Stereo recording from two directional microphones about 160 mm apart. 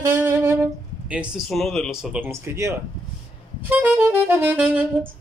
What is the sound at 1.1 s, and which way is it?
Speech, 5° right (ahead or behind).